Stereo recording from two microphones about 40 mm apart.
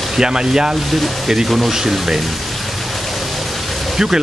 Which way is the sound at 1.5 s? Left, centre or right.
Centre.